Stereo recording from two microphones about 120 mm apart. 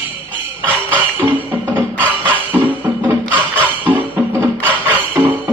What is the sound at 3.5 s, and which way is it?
Music, 10° left (ahead or behind).